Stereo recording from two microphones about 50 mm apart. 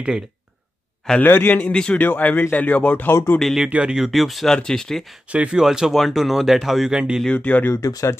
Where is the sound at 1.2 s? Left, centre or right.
Left.